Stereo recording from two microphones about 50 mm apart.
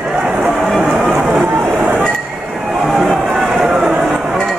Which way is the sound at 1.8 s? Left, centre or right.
Right.